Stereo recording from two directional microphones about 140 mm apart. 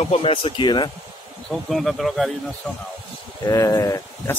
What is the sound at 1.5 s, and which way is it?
Speech, centre (ahead or behind).